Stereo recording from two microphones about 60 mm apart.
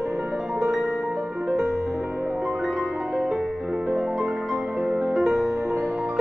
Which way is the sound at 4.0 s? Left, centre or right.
Centre.